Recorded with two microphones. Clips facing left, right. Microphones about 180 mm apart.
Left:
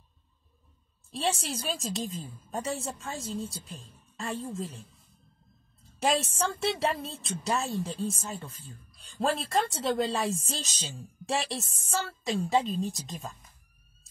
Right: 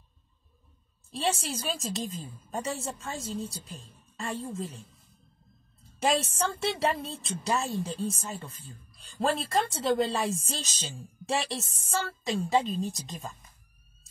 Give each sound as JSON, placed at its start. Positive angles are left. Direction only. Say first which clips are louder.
{"t": 1.1, "sound": "speech", "louder": "right 1 dB", "side_deg": 0}
{"t": 6.6, "sound": "speech", "louder": "right 1 dB", "side_deg": 0}